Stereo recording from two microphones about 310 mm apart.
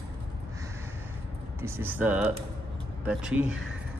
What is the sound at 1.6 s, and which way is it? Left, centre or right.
Speech, centre.